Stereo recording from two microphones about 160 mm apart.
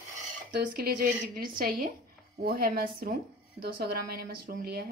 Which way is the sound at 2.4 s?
70° right (ahead or behind).